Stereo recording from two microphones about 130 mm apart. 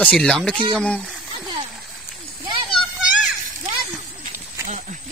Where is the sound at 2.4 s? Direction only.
40° right (ahead or behind).